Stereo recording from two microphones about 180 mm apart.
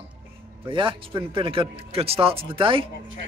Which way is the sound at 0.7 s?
30° right (ahead or behind).